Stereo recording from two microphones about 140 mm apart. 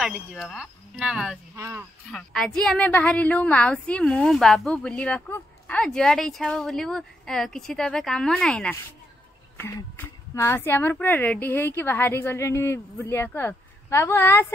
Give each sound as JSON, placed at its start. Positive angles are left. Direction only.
{"t": 0.0, "sound": "speech", "side_deg": 0}
{"t": 1.6, "sound": "speech", "side_deg": -15}
{"t": 2.0, "sound": "speech", "side_deg": 5}
{"t": 9.9, "sound": "a woman's voice", "side_deg": 15}